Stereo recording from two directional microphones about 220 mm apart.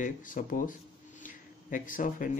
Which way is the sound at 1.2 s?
35° left (ahead or behind).